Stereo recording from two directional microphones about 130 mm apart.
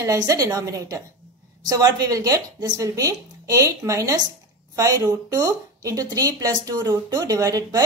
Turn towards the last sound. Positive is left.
turn(degrees=-25)  # may be behind; listen again after turning